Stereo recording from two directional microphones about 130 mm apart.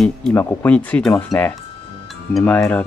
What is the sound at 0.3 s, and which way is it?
Speech, 20° left (ahead or behind).